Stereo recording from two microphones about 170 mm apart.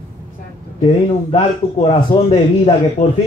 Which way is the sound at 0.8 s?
35° left (ahead or behind).